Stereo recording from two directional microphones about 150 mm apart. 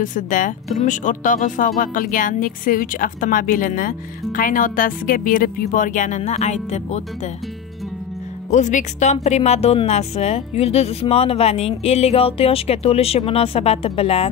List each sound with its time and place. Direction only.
0.0 s a woman's voice: 60° left (ahead or behind)
8.5 s speech: 55° left (ahead or behind)